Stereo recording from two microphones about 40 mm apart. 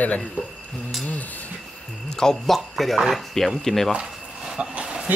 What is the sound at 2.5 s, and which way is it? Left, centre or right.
Speech, centre.